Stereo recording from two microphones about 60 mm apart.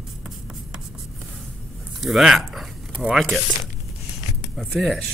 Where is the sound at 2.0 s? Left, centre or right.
Centre.